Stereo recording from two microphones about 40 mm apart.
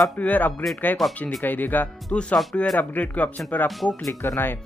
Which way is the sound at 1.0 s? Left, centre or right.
Centre.